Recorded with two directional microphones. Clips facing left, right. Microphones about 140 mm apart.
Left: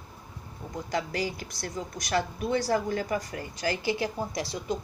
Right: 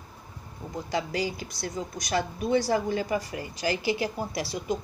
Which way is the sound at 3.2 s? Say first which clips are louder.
Right 1 dB; 10° right (ahead or behind).